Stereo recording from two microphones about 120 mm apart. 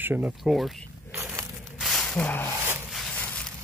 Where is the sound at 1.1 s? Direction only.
20° right (ahead or behind).